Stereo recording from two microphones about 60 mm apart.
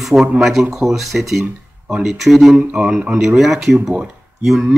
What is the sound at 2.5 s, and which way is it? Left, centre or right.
Speech, centre.